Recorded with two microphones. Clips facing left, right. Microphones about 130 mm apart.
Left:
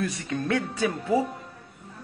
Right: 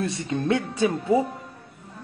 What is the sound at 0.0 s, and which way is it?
Speech, 25° right (ahead or behind).